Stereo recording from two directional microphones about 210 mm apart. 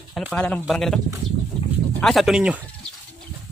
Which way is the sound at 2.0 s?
Centre (ahead or behind).